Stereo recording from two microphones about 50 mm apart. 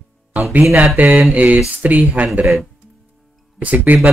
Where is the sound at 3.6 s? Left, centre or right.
Right.